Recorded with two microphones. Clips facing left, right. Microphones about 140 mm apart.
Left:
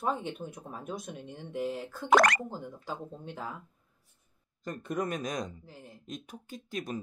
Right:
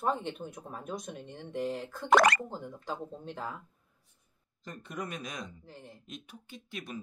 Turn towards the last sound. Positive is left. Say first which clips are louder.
# left 5 dB
turn(degrees=40)  # may be behind; listen again after turning